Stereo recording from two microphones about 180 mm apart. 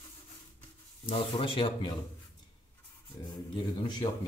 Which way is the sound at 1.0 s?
30° left (ahead or behind).